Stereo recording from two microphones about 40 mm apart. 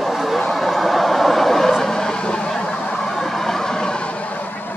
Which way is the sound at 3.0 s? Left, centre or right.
Centre.